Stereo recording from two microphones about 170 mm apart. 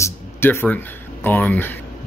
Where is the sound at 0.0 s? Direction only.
15° left (ahead or behind).